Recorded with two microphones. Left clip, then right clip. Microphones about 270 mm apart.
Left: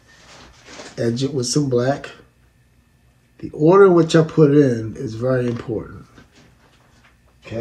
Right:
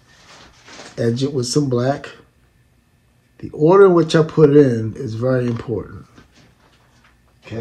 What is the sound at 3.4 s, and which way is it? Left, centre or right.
Speech, right.